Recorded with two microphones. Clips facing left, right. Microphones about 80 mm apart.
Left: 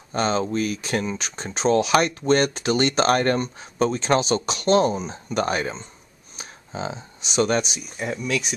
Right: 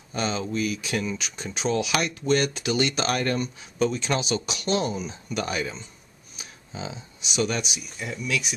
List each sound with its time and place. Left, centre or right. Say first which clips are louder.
0.1 s speech: left 5 dB; left